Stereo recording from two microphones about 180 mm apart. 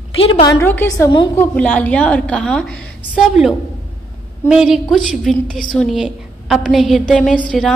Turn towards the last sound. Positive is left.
turn(degrees=5)  # may be behind; listen again after turning